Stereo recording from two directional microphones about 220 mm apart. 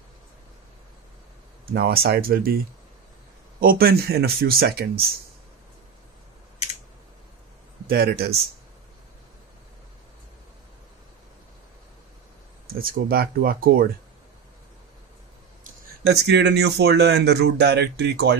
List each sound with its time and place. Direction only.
1.7 s speech: 45° right (ahead or behind)
7.8 s speech: 45° right (ahead or behind)
12.6 s speech: 40° right (ahead or behind)
15.6 s speech: 50° right (ahead or behind)